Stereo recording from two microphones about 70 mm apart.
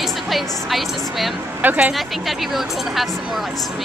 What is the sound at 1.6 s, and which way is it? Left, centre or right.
Speech, right.